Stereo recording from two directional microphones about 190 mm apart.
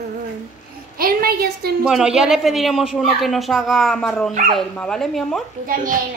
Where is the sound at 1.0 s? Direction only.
50° right (ahead or behind).